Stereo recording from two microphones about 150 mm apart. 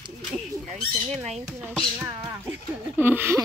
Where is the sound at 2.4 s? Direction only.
15° right (ahead or behind).